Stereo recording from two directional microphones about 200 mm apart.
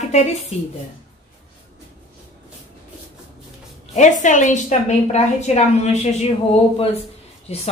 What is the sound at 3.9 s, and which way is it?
A woman's voice, 40° left (ahead or behind).